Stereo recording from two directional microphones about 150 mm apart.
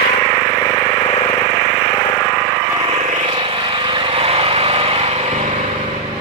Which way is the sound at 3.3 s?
35° right (ahead or behind).